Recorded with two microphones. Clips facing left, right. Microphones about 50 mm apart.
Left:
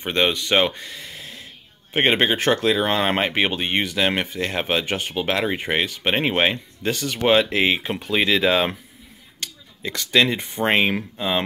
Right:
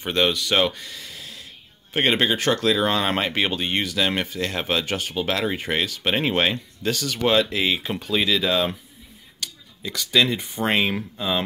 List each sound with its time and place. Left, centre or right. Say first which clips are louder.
0.0 s speech: left 1 dB; centre
0.3 s speech: left 1 dB; left
9.4 s a sound: left 2 dB; left
10.3 s speech: left 1 dB; left
10.6 s speech: left 3 dB; centre